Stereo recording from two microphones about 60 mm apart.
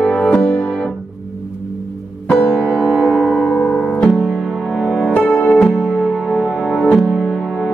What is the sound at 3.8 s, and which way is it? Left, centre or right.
Music, centre.